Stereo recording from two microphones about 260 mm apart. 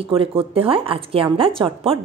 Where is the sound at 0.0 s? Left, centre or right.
Right.